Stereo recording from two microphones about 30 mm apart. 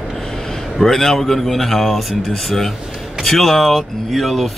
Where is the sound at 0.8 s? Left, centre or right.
Centre.